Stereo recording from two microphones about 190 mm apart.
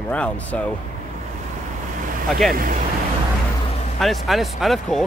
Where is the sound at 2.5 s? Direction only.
50° right (ahead or behind).